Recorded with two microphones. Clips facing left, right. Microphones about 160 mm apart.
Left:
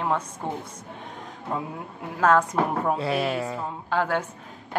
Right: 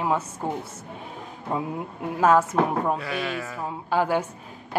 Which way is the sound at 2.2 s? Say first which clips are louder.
Right 1 dB; 10° right (ahead or behind).